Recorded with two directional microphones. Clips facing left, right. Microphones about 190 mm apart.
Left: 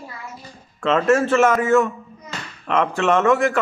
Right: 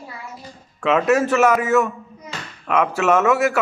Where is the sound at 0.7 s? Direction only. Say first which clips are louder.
Even; 5° right (ahead or behind).